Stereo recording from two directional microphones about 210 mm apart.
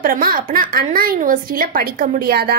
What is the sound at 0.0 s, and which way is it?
A woman's voice, 40° right (ahead or behind).